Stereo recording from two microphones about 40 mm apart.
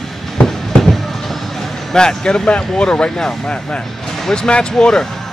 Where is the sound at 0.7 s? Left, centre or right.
Centre.